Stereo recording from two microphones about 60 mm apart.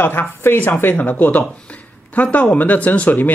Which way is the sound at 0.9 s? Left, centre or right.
Left.